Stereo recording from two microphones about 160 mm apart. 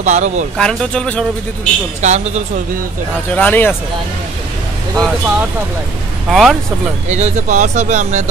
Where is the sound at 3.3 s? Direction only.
10° left (ahead or behind).